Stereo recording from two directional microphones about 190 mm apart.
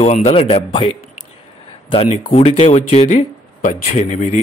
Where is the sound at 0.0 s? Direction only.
35° left (ahead or behind).